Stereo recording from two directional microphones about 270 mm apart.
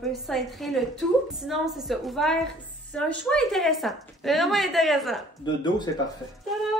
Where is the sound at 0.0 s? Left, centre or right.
Centre.